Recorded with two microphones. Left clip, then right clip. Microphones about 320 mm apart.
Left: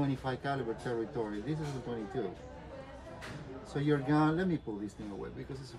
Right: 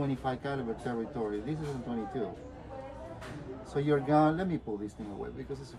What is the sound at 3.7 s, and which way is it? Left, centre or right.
Speech, centre.